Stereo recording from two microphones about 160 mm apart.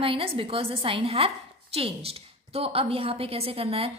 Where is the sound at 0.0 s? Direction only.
35° right (ahead or behind).